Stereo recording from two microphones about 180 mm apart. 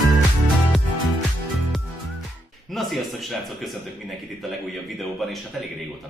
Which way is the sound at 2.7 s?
Centre (ahead or behind).